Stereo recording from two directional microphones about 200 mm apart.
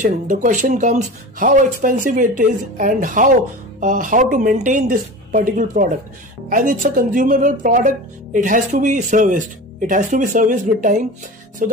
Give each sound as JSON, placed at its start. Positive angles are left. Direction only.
{"t": 0.0, "sound": "speech", "side_deg": -40}
{"t": 11.6, "sound": "music", "side_deg": -45}